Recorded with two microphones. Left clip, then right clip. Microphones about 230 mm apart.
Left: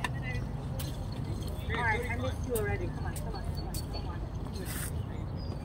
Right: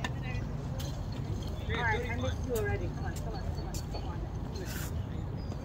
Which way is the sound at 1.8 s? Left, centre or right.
Left.